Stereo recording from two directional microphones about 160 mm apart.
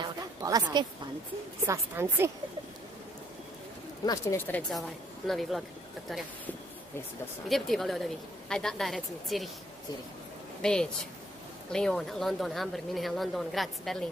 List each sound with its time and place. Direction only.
0.0 s a sound: 25° right (ahead or behind)
1.7 s a woman's voice: 15° right (ahead or behind)
4.0 s speech: 20° left (ahead or behind)
4.5 s speech: 5° left (ahead or behind)
7.4 s speech: centre (ahead or behind)
10.6 s speech: 5° left (ahead or behind)